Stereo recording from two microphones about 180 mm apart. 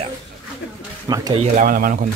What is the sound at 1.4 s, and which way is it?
Speech, 50° right (ahead or behind).